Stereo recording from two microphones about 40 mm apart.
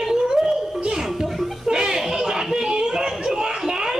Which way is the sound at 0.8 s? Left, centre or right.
Centre.